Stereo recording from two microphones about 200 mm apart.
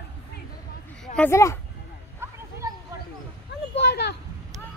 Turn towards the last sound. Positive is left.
turn(degrees=55)  # may be behind; listen again after turning